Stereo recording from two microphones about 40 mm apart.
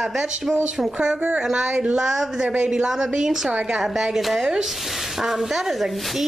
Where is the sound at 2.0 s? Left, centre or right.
Centre.